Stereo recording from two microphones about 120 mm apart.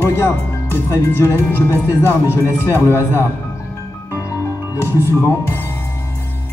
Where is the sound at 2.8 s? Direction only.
20° right (ahead or behind).